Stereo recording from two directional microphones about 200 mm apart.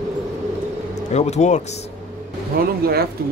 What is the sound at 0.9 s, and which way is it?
Speech, 35° left (ahead or behind).